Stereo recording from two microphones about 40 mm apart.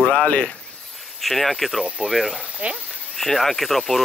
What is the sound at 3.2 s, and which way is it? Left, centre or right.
Speech, centre.